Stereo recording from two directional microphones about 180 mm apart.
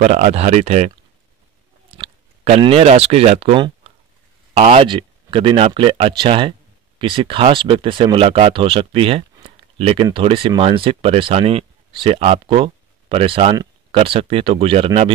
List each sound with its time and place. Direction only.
0.0 s speech: 40° right (ahead or behind)